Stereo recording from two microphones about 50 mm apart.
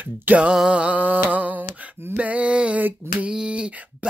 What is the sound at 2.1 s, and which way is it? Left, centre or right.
Gasp, right.